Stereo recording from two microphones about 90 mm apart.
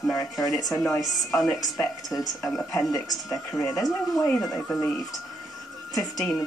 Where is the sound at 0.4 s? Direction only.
40° left (ahead or behind).